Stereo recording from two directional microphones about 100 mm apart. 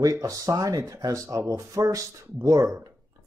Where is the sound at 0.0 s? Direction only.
35° right (ahead or behind).